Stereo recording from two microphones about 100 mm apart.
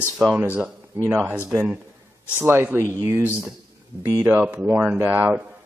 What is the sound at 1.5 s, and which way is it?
Speech, 20° right (ahead or behind).